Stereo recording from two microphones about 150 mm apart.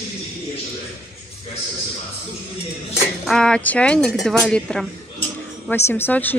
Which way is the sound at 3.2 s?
5° left (ahead or behind).